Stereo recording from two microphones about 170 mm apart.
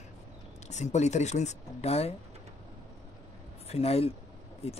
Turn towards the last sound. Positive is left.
turn(degrees=35)  # may be behind; listen again after turning